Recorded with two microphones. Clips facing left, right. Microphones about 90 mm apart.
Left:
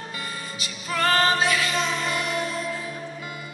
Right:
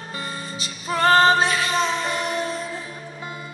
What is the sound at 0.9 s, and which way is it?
Music, 30° right (ahead or behind).